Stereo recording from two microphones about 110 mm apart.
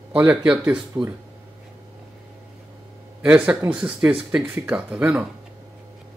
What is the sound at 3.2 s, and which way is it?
Speech, 10° right (ahead or behind).